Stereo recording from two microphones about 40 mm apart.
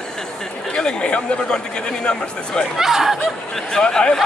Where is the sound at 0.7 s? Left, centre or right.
Left.